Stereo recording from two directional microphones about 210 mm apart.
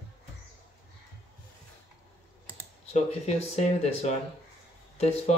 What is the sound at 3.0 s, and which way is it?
Speech, 30° left (ahead or behind).